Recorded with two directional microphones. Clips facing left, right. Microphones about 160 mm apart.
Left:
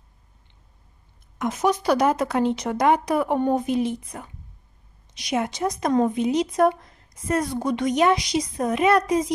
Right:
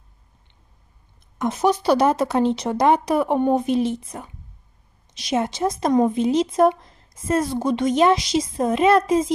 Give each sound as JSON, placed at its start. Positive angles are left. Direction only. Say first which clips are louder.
{"t": 1.4, "sound": "speech", "louder": "right 2 dB", "side_deg": -30}